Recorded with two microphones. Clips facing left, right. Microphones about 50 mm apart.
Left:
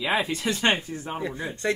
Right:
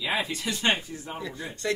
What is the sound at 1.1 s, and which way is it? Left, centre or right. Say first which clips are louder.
Speech: left 5 dB; left.